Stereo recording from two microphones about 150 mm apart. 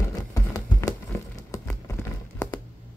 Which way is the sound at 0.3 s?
20° left (ahead or behind).